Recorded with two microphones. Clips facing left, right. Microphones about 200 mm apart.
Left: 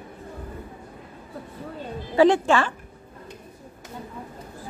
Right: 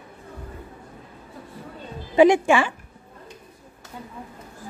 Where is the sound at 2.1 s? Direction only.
10° right (ahead or behind).